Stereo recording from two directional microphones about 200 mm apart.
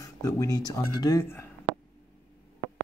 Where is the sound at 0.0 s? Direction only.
15° left (ahead or behind).